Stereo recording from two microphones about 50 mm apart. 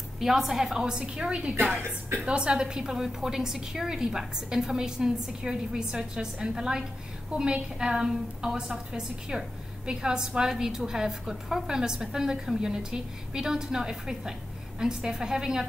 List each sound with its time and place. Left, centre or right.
0.2 s a woman's voice: centre